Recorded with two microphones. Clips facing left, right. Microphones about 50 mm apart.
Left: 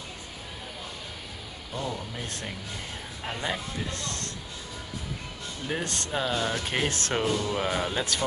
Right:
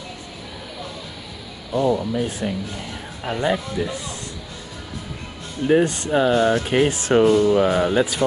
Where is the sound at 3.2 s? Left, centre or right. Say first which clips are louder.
Right 10 dB; right.